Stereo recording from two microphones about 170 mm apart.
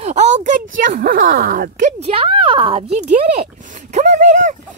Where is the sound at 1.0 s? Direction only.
60° right (ahead or behind); by 3.1 s 40° right (ahead or behind).